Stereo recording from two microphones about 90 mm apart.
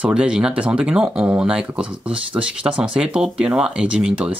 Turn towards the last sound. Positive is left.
turn(degrees=-15)  # may be behind; listen again after turning